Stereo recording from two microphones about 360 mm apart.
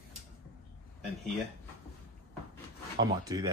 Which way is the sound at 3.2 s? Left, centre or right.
Centre.